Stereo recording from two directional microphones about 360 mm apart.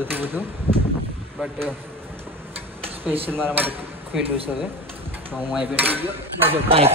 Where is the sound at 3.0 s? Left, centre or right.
Centre.